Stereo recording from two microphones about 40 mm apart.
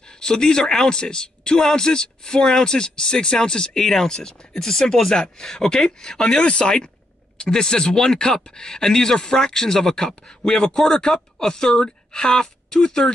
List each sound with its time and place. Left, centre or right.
0.2 s a man's voice: centre